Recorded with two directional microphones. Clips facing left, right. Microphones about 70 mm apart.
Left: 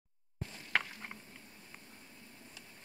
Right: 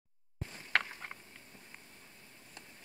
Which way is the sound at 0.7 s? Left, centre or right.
Centre.